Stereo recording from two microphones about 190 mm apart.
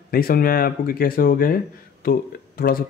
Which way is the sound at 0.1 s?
50° left (ahead or behind).